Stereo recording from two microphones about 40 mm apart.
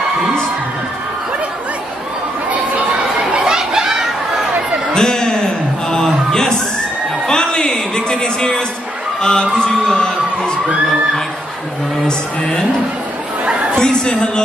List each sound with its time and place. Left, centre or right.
3.3 s chatter: centre
4.9 s a sound: centre
7.2 s music: centre
9.2 s a woman's voice: centre
13.7 s a woman's voice: centre